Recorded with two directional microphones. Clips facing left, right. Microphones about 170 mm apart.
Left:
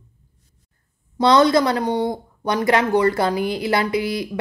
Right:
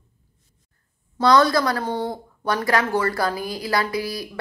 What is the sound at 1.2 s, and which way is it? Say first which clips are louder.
Speech: left 2 dB; 20° left (ahead or behind).